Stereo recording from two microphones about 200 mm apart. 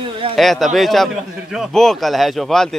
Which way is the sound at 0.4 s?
Centre (ahead or behind).